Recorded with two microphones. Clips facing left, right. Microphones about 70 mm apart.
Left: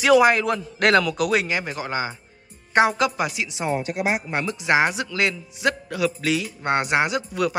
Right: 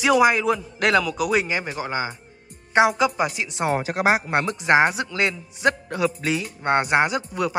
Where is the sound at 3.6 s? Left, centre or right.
Right.